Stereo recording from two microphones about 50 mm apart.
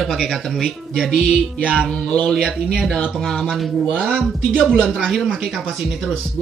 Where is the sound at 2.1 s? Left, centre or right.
Centre.